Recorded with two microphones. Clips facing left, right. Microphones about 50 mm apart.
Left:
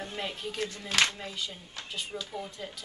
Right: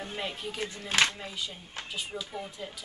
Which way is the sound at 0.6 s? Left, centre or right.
Right.